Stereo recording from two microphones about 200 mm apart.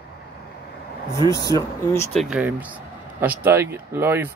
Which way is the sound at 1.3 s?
15° left (ahead or behind).